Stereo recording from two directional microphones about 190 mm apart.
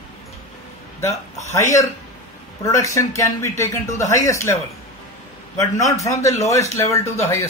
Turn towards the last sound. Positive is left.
turn(degrees=15)  # may be behind; listen again after turning